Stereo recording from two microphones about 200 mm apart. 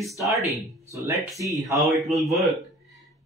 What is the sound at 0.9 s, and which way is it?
Speech, 15° right (ahead or behind).